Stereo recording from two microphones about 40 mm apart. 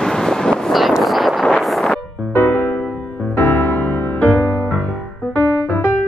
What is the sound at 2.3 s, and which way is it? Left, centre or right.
Music, left.